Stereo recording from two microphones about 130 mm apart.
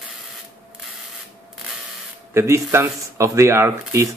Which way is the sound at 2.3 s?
20° right (ahead or behind).